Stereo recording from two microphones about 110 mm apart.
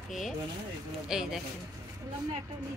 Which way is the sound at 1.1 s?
5° right (ahead or behind).